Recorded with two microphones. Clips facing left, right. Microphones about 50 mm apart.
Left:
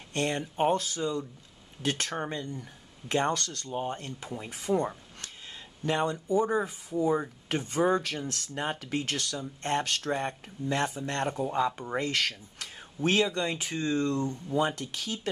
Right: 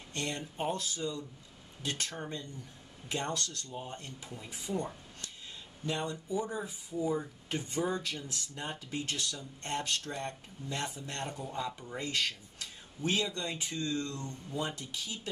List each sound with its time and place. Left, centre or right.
0.1 s speech: left
13.7 s speech: left
14.5 s speech: left